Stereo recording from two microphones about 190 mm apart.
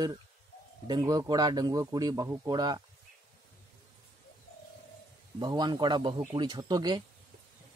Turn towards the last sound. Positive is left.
turn(degrees=-20)  # may be behind; listen again after turning